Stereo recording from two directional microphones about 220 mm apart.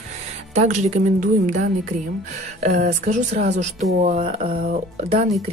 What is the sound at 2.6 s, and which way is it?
Speech, 40° right (ahead or behind).